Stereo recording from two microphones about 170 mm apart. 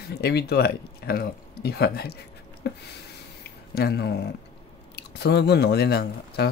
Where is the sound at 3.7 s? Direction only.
70° left (ahead or behind).